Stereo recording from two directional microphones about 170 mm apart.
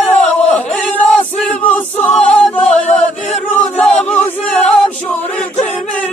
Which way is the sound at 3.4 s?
10° left (ahead or behind).